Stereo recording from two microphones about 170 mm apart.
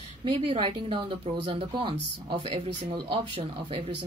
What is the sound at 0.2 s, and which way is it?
Speech, 30° right (ahead or behind).